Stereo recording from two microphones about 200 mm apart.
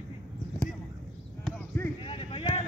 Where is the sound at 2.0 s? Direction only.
25° left (ahead or behind).